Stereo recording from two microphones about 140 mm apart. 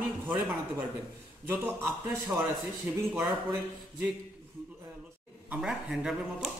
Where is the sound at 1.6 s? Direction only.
15° right (ahead or behind).